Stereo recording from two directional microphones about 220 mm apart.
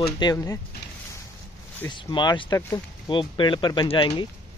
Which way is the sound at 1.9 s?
20° left (ahead or behind).